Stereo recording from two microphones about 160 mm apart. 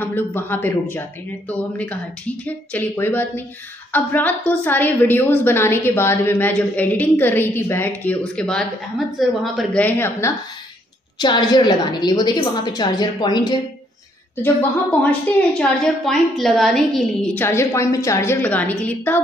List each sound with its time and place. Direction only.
0.0 s a woman's voice: 10° left (ahead or behind)
9.8 s a woman's voice: 15° left (ahead or behind)
11.1 s a woman's voice: 25° left (ahead or behind)
14.3 s a woman's voice: 10° left (ahead or behind)
17.5 s a woman's voice: 15° left (ahead or behind)